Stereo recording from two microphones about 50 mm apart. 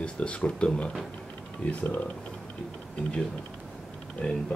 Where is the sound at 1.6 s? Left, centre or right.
Left.